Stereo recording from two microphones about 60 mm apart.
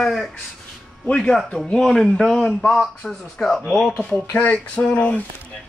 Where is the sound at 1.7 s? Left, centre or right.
Centre.